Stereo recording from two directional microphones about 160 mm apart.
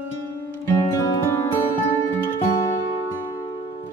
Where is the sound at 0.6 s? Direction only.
20° left (ahead or behind).